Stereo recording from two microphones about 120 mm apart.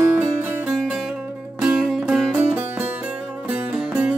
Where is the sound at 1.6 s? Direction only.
5° right (ahead or behind).